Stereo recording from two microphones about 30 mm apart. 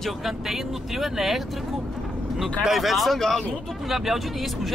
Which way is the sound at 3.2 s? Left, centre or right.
Centre.